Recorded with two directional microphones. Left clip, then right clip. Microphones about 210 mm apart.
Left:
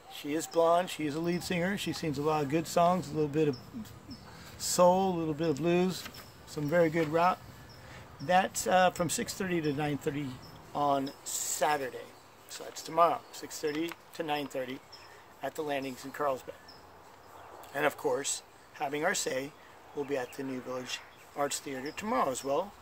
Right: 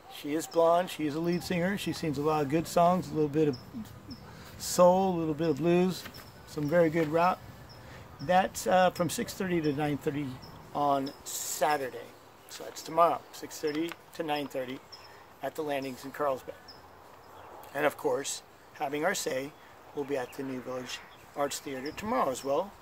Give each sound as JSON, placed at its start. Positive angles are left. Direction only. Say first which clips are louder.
{"t": 0.1, "sound": "speech", "louder": "right 1 dB", "side_deg": 5}
{"t": 17.7, "sound": "speech", "louder": "right 1 dB", "side_deg": 10}